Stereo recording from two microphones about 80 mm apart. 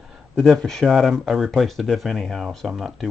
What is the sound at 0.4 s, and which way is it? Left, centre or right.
Speech, centre.